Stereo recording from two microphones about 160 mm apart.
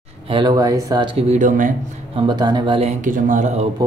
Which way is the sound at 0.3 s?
30° right (ahead or behind).